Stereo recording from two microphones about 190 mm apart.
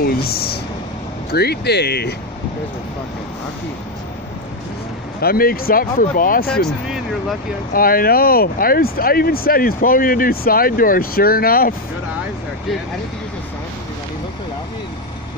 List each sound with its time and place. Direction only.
0.0 s a sound: 55° left (ahead or behind)
1.3 s speech: 55° left (ahead or behind)
5.2 s speech: 50° left (ahead or behind)
7.7 s speech: 50° left (ahead or behind)